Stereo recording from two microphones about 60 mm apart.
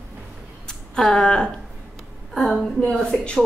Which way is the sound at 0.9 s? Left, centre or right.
Centre.